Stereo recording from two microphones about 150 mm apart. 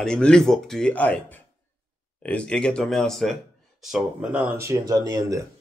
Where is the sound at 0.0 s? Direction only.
5° left (ahead or behind); by 5.4 s 25° right (ahead or behind).